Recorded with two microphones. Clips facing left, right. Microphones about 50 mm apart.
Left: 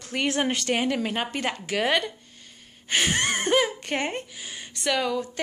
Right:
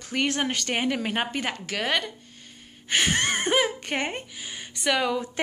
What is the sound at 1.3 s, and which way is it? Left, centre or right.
Speech, centre.